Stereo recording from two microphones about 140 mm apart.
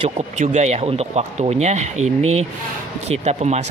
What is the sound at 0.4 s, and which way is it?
Speech, 55° right (ahead or behind).